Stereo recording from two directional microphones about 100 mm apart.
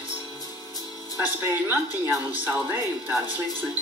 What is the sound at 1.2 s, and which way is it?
Speech, 20° right (ahead or behind).